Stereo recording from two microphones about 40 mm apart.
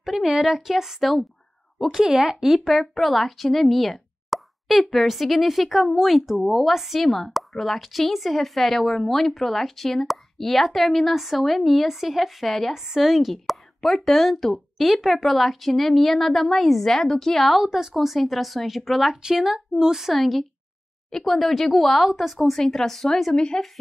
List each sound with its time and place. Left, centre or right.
0.0 s a woman's voice: centre
2.7 s speech: centre
12.7 s speech: centre
17.5 s a woman's voice: centre
22.6 s speech: centre
23.3 s speech: left